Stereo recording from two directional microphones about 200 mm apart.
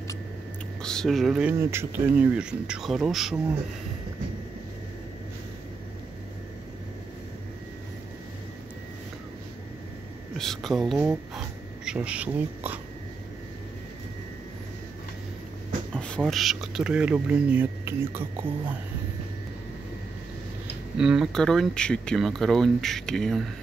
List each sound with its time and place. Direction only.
0.8 s speech: centre (ahead or behind)
10.3 s a sound: centre (ahead or behind)
15.9 s speech: 5° left (ahead or behind); by 18.8 s 10° right (ahead or behind)
21.0 s speech: 5° right (ahead or behind)